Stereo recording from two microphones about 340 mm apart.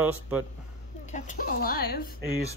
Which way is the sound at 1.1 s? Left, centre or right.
Left.